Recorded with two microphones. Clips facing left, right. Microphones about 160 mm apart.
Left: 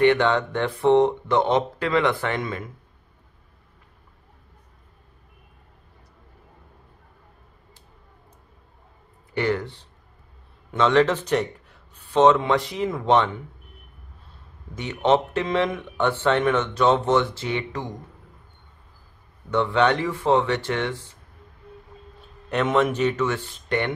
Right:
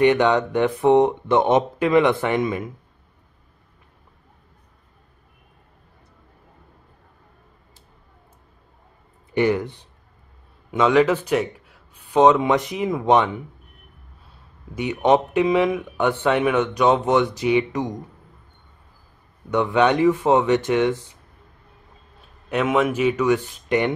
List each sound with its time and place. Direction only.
0.0 s speech: 15° right (ahead or behind)
9.3 s speech: 15° right (ahead or behind)
14.7 s speech: 10° right (ahead or behind)
19.5 s speech: 15° right (ahead or behind)
22.5 s speech: 5° right (ahead or behind)